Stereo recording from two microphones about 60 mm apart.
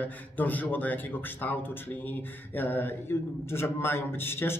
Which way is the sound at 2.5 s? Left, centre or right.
Left.